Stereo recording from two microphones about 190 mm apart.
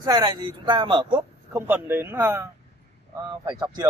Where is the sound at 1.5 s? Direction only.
10° right (ahead or behind).